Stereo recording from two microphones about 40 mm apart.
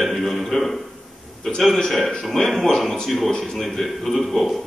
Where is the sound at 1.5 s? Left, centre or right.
Centre.